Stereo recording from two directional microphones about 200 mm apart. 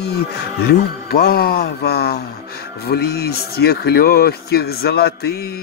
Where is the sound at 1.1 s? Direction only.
50° left (ahead or behind).